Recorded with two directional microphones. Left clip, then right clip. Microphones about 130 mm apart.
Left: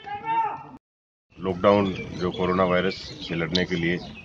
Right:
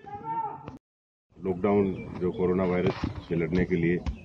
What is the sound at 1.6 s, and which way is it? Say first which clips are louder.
Speech: left 7 dB; 30° left (ahead or behind).